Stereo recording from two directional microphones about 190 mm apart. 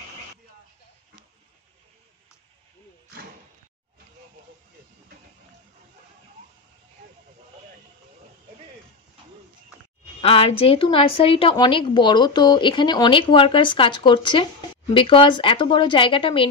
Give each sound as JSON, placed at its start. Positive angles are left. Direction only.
{"t": 10.2, "sound": "a woman's voice", "side_deg": 30}